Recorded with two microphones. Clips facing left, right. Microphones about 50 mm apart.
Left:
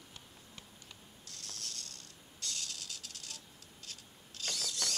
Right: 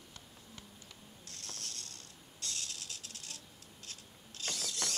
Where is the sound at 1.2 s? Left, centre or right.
Right.